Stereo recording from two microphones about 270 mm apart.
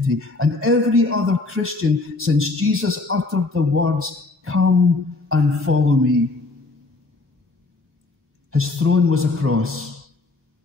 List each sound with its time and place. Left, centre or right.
0.1 s a man's voice: right
8.5 s a man's voice: right